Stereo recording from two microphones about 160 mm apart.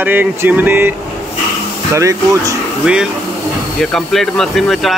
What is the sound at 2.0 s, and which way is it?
Speech, 20° right (ahead or behind).